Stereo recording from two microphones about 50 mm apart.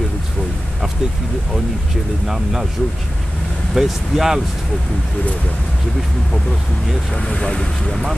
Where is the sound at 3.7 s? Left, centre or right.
Centre.